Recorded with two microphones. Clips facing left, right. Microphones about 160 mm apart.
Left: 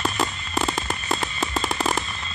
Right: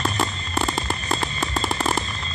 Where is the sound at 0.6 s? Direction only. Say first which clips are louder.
Right 1 dB; centre (ahead or behind).